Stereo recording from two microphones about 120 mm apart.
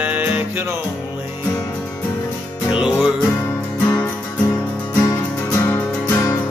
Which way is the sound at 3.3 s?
20° left (ahead or behind).